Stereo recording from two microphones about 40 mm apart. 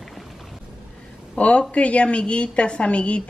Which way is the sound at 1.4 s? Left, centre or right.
Left.